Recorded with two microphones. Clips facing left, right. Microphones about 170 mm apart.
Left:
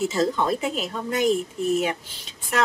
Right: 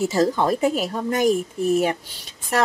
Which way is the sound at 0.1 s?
40° right (ahead or behind).